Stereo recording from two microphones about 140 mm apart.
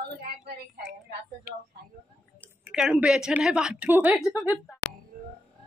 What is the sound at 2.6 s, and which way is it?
Speech, 5° right (ahead or behind).